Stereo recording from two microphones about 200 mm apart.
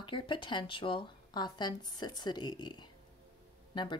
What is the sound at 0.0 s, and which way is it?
A woman's voice, 25° left (ahead or behind).